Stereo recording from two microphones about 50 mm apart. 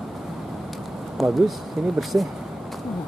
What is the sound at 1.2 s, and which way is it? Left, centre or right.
Speech, centre.